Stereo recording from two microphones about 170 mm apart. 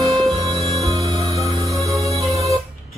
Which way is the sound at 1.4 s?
20° right (ahead or behind).